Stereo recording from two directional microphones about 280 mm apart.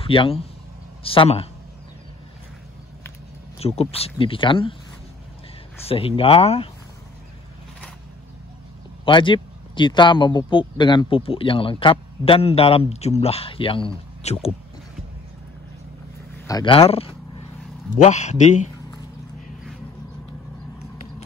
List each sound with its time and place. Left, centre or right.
0.0 s speech: centre
3.5 s speech: left
5.9 s speech: centre
9.0 s speech: centre
16.4 s a man's voice: centre